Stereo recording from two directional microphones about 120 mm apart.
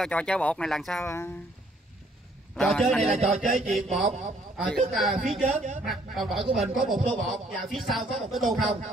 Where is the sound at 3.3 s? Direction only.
70° right (ahead or behind).